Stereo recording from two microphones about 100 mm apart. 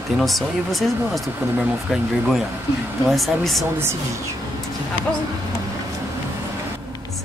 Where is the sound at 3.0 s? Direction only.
Centre (ahead or behind).